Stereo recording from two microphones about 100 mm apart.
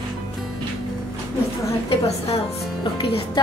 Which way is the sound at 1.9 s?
85° left.